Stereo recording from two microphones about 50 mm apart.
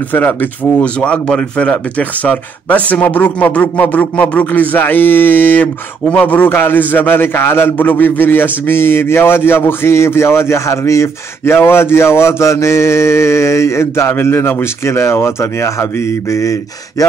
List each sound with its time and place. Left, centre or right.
0.1 s speech: left
1.0 s speech: left
2.0 s speech: left
6.5 s a man's voice: left
6.8 s a man's voice: left
7.7 s a man's voice: left